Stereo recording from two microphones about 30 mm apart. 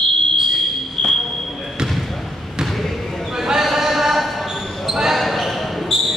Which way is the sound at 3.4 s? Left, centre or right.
Centre.